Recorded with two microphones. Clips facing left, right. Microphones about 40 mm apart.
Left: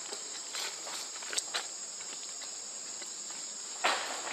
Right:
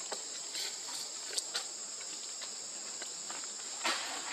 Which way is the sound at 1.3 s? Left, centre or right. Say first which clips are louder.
Left 4 dB; left.